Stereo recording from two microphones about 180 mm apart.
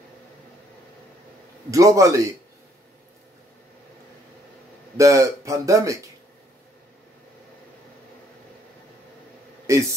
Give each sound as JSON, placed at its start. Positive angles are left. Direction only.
{"t": 1.7, "sound": "speech", "side_deg": -20}
{"t": 4.9, "sound": "speech", "side_deg": -15}
{"t": 9.7, "sound": "speech", "side_deg": -15}